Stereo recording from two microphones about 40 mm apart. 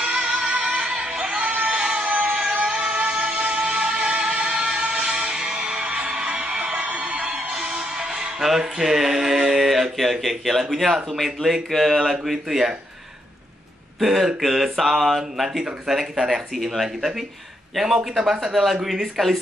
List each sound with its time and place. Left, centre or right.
0.0 s music: right
2.6 s music: right
8.5 s speech: centre
13.9 s speech: centre
18.3 s speech: centre
18.6 s speech: centre